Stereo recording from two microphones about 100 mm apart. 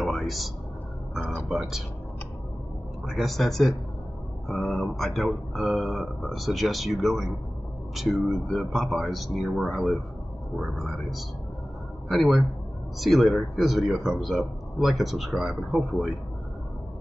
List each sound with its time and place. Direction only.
0.0 s a sound: centre (ahead or behind)
1.5 s a man's voice: 5° right (ahead or behind)
3.1 s a man's voice: centre (ahead or behind)